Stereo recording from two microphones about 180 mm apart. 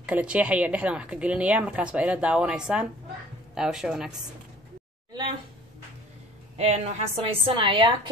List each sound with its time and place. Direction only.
0.0 s a woman's voice: 5° right (ahead or behind)
6.5 s a woman's voice: 35° right (ahead or behind)